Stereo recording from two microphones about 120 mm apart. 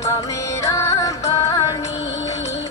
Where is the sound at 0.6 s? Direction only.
25° left (ahead or behind).